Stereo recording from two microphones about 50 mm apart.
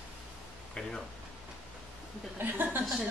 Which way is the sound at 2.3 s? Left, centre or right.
Right.